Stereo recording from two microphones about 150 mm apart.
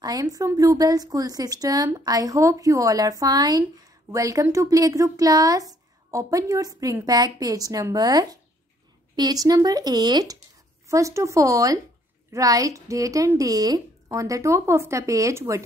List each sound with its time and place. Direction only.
0.0 s speech: 25° right (ahead or behind)